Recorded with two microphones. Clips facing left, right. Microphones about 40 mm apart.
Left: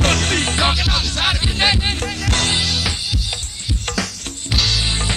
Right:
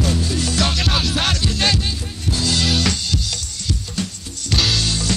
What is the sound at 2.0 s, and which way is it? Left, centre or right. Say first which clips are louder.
Music: left 5 dB; left.